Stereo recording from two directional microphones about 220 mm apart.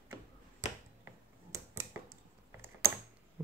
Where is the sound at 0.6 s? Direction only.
30° left (ahead or behind).